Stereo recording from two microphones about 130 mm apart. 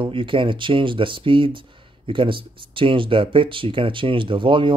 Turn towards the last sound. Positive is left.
turn(degrees=-40)  # may be behind; listen again after turning